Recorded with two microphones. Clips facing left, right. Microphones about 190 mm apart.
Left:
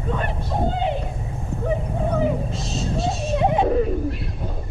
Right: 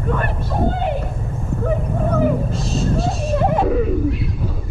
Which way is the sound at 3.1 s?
55° right (ahead or behind).